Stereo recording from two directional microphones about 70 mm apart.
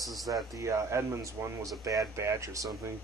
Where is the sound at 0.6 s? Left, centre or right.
Right.